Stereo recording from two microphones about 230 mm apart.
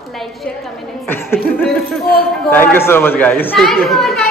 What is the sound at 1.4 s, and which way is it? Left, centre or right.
A child's voice, centre.